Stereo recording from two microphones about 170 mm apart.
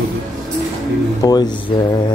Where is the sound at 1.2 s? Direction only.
25° left (ahead or behind).